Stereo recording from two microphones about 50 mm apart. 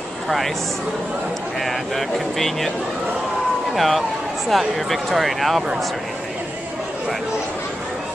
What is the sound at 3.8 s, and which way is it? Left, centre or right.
Speech, centre.